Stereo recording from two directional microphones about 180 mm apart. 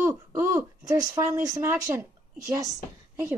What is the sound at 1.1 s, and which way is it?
A woman's voice, 15° right (ahead or behind).